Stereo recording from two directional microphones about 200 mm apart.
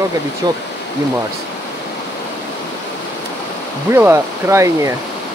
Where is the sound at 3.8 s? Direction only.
10° right (ahead or behind).